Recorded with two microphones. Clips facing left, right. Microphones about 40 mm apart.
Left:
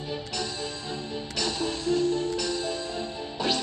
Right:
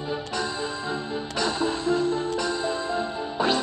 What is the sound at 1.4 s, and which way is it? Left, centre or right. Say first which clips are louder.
Music: right 4 dB; right.